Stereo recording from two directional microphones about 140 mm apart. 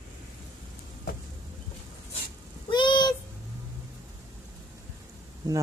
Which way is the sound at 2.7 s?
35° left (ahead or behind).